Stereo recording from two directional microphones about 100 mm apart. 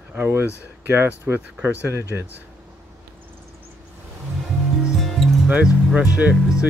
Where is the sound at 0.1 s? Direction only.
20° right (ahead or behind).